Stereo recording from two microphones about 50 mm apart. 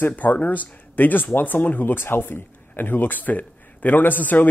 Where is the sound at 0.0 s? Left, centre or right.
Left.